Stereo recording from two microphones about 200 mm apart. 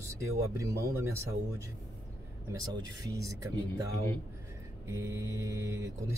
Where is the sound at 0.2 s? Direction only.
15° right (ahead or behind).